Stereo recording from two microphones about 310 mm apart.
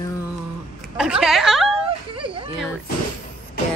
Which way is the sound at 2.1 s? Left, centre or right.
Centre.